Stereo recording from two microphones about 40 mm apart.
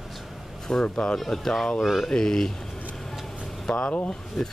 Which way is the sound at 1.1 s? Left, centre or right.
Centre.